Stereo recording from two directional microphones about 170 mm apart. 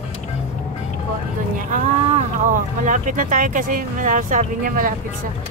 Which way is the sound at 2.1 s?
50° right (ahead or behind).